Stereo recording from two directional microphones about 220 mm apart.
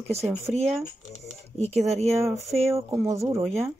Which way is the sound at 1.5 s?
30° right (ahead or behind).